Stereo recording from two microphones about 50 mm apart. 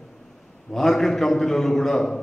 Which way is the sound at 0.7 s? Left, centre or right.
Centre.